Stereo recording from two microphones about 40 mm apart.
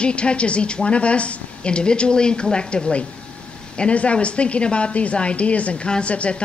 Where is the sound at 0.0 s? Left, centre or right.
Left.